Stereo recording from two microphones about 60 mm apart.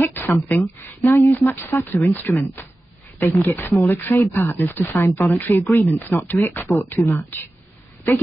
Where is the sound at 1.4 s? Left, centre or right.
Left.